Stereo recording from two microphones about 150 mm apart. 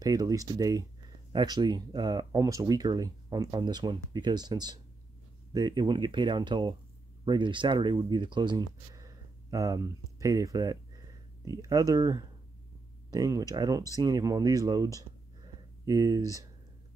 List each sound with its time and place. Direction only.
0.0 s speech: 25° right (ahead or behind)